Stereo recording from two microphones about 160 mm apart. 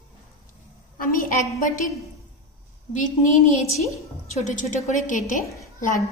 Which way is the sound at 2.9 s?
50° left (ahead or behind).